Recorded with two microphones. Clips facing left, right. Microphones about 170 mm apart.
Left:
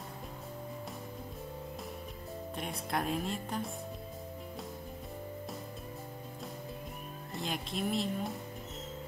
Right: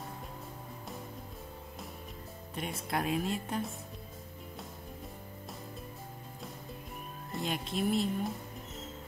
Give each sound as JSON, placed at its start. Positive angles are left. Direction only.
{"t": 2.5, "sound": "speech", "side_deg": 0}
{"t": 7.3, "sound": "speech", "side_deg": 0}